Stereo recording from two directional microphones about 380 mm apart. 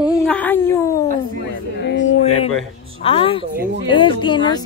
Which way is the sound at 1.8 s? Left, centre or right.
Left.